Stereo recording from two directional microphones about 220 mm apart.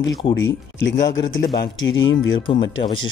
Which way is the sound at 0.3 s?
55° left (ahead or behind).